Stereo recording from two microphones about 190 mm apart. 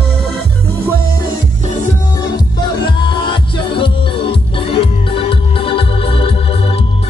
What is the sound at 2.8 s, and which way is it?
Music, 25° left (ahead or behind).